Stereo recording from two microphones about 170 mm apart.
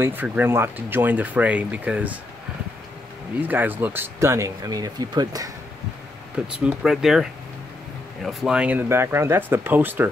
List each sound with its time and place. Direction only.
0.0 s speech: 10° right (ahead or behind)
3.3 s speech: 10° right (ahead or behind)
6.3 s speech: 5° right (ahead or behind)
8.3 s speech: 5° right (ahead or behind)